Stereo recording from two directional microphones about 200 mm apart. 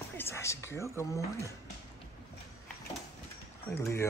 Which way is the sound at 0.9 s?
15° left (ahead or behind).